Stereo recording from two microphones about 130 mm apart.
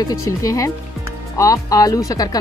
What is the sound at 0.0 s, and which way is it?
Speech, 25° left (ahead or behind).